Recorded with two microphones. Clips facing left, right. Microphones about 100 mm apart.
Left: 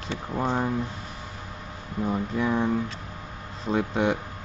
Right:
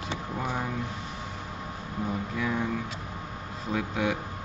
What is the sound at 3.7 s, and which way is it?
Speech, 30° left (ahead or behind).